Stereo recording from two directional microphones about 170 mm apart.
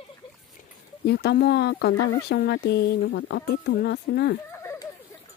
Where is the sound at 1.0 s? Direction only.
75° left (ahead or behind).